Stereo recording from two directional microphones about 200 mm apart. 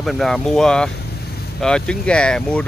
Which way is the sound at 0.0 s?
Centre (ahead or behind).